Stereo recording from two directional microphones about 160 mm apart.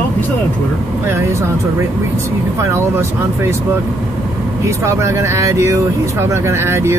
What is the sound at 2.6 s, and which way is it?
Speech, 15° right (ahead or behind).